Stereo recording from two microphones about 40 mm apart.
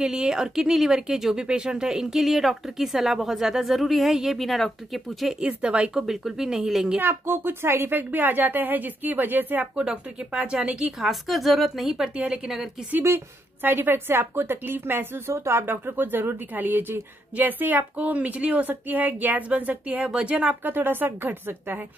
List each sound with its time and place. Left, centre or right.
0.0 s speech: centre
5.6 s speech: right
5.9 s speech: centre
7.0 s speech: right
8.0 s speech: right
9.8 s speech: right
10.8 s a woman's voice: centre
12.3 s speech: centre
13.6 s speech: right
20.0 s speech: right
20.6 s speech: right